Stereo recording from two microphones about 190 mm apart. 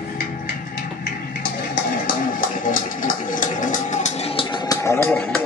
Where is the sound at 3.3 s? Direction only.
45° left (ahead or behind).